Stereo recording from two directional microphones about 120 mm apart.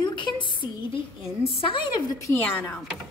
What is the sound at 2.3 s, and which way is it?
Speech, 15° left (ahead or behind).